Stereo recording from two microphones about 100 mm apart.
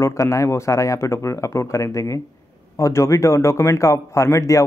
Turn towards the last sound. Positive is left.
turn(degrees=30)  # may be behind; listen again after turning